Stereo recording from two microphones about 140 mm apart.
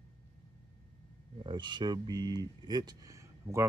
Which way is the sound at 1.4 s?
35° right (ahead or behind).